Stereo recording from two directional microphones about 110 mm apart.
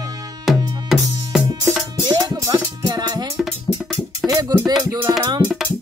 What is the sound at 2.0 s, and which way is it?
Music, 40° right (ahead or behind).